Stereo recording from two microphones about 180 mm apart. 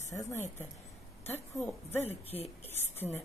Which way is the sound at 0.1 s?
15° left (ahead or behind).